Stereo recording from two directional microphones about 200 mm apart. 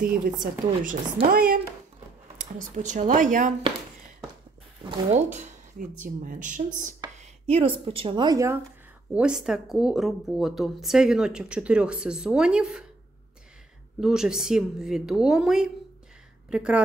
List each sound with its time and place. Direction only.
0.0 s a woman's voice: 40° right (ahead or behind)
2.7 s speech: 35° right (ahead or behind)
5.1 s speech: 35° right (ahead or behind)
7.0 s speech: 25° right (ahead or behind)
9.1 s a woman's voice: 5° right (ahead or behind)
14.0 s a woman's voice: 5° right (ahead or behind)